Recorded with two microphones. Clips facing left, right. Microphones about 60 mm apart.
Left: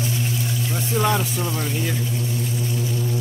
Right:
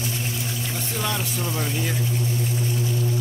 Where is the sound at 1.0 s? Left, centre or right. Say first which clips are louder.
Left 7 dB; left.